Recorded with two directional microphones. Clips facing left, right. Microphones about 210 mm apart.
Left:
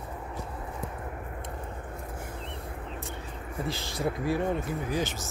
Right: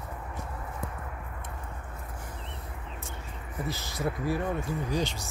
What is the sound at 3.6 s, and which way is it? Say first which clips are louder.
Speech: left 1 dB; 30° left (ahead or behind).